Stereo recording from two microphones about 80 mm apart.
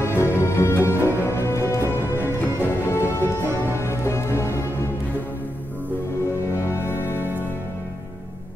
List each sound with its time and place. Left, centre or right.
0.0 s music: left
6.5 s music: left
7.2 s music: right